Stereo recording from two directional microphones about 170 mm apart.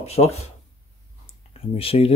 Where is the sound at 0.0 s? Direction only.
40° left (ahead or behind).